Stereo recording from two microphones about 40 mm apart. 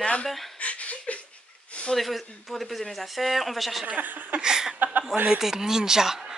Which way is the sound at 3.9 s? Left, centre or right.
Right.